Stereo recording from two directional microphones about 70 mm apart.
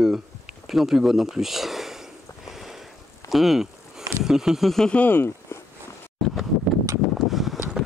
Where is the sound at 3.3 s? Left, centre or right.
Centre.